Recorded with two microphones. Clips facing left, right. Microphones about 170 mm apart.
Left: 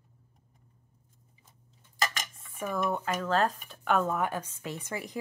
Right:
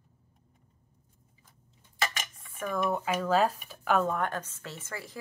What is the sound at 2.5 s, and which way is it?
Speech, centre (ahead or behind).